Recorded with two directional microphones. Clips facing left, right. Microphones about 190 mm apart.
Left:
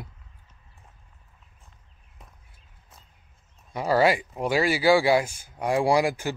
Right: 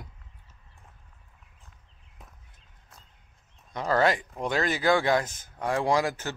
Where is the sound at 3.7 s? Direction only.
10° left (ahead or behind).